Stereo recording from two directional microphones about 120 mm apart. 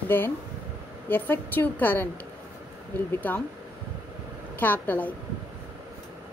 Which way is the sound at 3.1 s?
15° left (ahead or behind).